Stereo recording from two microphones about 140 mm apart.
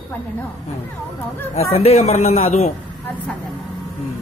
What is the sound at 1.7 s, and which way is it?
Speech, 50° left (ahead or behind).